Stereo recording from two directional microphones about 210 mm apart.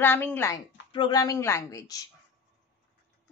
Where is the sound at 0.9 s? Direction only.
20° left (ahead or behind).